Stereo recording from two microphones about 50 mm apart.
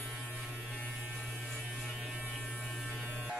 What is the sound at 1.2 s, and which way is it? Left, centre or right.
Electric toothbrush, centre.